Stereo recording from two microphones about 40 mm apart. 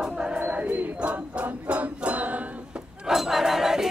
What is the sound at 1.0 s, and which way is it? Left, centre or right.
Music, right.